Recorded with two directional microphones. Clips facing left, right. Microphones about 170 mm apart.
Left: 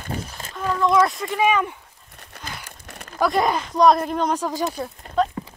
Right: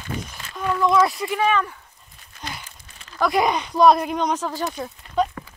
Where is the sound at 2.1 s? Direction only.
70° left (ahead or behind).